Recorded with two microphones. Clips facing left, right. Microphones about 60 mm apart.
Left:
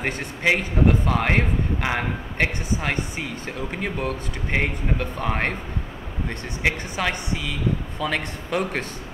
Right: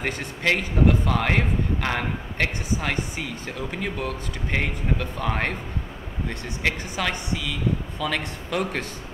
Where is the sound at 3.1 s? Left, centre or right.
Centre.